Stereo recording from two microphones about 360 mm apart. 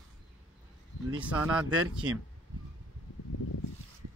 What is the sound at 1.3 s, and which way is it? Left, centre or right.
Speech, centre.